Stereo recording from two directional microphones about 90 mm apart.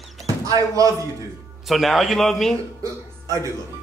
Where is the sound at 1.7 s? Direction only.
Centre (ahead or behind).